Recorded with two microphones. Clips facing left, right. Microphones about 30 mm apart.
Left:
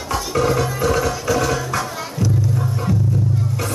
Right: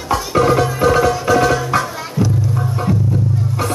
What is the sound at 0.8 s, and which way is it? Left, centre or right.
Tabla, centre.